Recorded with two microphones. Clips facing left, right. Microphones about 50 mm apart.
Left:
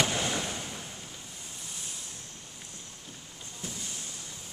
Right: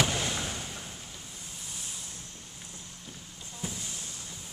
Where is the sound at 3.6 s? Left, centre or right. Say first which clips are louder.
Right 2 dB; centre.